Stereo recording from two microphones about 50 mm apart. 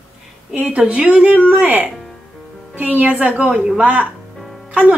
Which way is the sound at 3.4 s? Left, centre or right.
Centre.